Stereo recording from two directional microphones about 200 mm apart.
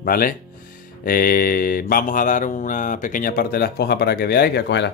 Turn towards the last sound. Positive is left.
turn(degrees=60)  # may be behind; listen again after turning